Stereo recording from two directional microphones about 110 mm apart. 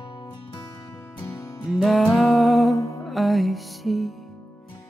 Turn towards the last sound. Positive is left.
turn(degrees=0)  # may be behind; listen again after turning